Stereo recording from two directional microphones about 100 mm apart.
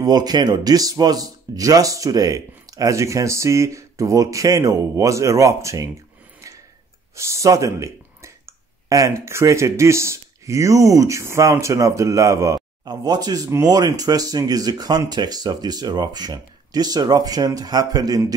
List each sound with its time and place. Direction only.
0.0 s speech: 40° right (ahead or behind)
7.2 s speech: 30° right (ahead or behind)